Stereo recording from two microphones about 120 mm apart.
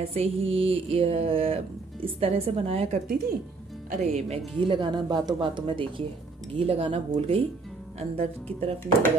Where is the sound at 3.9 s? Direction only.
75° right (ahead or behind).